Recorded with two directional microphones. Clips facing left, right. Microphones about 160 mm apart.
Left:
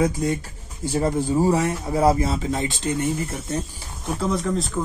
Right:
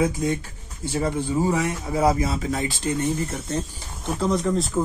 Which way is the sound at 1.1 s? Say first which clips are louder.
Left 3 dB; 35° left (ahead or behind).